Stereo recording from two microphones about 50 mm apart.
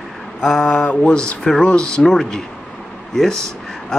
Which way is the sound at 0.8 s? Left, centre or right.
Left.